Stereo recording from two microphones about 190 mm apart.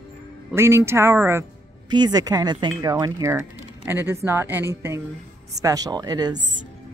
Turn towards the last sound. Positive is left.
turn(degrees=-20)  # may be behind; listen again after turning